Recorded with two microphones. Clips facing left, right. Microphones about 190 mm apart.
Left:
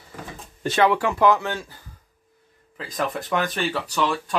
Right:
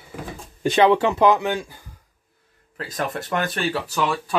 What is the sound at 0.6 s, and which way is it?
Speech, 20° right (ahead or behind).